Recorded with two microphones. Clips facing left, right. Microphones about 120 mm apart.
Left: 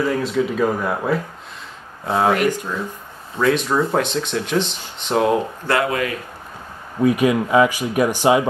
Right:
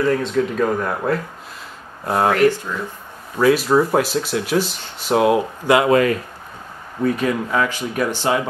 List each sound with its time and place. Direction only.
0.0 s speech: 5° left (ahead or behind)
2.3 s speech: 15° left (ahead or behind)
3.3 s speech: 5° right (ahead or behind)
5.7 s speech: 15° right (ahead or behind)
7.0 s speech: 15° left (ahead or behind)